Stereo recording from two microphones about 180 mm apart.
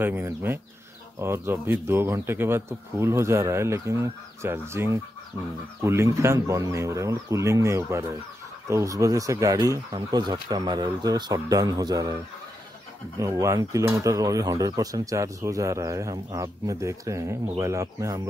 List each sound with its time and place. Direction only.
0.0 s speech: 10° right (ahead or behind)
13.2 s speech: 15° right (ahead or behind)